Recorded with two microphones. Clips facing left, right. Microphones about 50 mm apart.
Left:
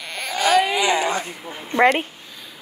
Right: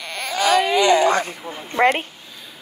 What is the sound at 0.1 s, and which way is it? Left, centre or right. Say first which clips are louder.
Baby cry: even; centre.